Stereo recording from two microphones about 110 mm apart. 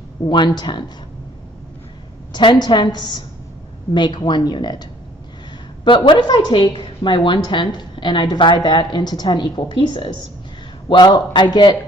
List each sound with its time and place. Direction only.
0.3 s a woman's voice: 45° left (ahead or behind)
2.3 s a woman's voice: 45° left (ahead or behind)
5.9 s a woman's voice: 45° left (ahead or behind)